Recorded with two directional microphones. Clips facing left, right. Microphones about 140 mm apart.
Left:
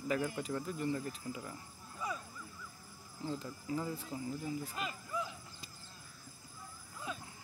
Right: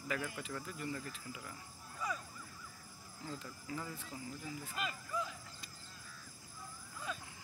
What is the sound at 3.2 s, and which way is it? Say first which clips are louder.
Speech: left 6 dB; 30° left (ahead or behind).